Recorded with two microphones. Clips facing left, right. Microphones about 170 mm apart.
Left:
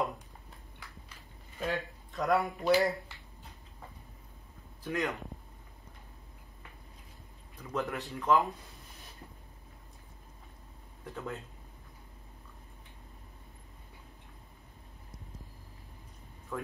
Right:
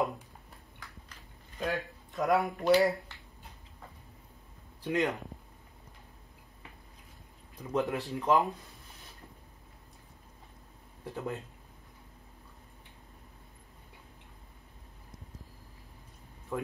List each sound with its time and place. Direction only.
1.6 s speech: centre (ahead or behind)
4.8 s speech: 20° right (ahead or behind)
7.7 s speech: 20° right (ahead or behind)
11.1 s speech: 20° right (ahead or behind)
16.5 s speech: 20° right (ahead or behind)